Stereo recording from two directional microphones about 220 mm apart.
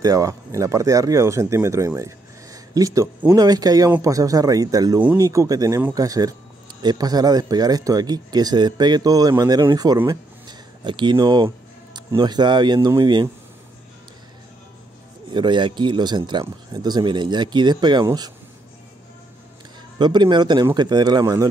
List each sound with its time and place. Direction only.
0.0 s speech: 15° right (ahead or behind)
15.3 s speech: 20° right (ahead or behind)
20.0 s speech: 20° right (ahead or behind)